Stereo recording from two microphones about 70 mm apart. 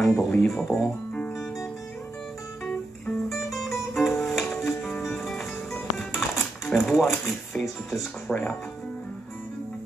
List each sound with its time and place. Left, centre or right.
0.0 s speech: centre
3.3 s music: centre
8.3 s speech: centre